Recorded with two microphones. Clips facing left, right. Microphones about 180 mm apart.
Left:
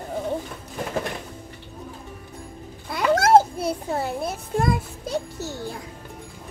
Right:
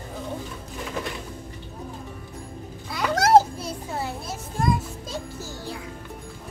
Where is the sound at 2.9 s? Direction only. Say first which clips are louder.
Left 1 dB; 50° left (ahead or behind).